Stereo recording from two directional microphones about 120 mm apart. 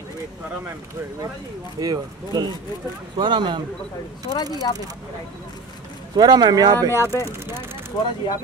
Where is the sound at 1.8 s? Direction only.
30° right (ahead or behind).